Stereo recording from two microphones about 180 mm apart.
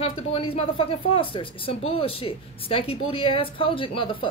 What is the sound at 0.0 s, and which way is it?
A woman's voice, 30° left (ahead or behind).